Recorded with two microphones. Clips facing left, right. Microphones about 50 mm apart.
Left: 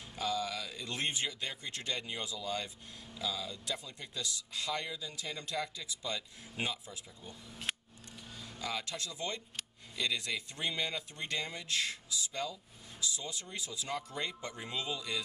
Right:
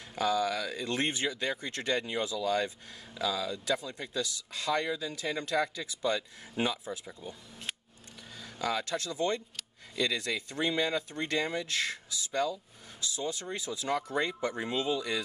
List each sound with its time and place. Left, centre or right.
0.1 s speech: right
1.3 s speech: right
4.2 s speech: right
8.4 s speech: right
12.3 s speech: right
13.1 s speech: right